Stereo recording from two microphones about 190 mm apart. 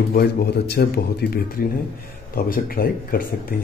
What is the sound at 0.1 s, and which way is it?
Speech, 55° left (ahead or behind).